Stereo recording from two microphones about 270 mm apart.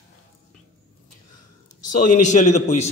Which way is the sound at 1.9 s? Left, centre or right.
Left.